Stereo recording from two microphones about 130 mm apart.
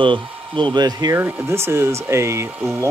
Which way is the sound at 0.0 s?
40° right (ahead or behind).